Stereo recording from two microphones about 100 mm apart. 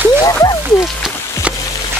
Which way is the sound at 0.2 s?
40° left (ahead or behind).